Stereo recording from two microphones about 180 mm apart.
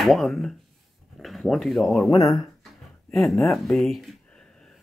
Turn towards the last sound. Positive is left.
turn(degrees=0)  # may be behind; listen again after turning